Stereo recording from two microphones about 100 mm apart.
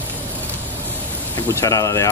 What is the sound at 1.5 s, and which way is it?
Speech, 30° left (ahead or behind).